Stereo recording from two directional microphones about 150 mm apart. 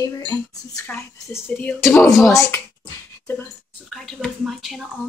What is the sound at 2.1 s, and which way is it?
Speech, centre (ahead or behind).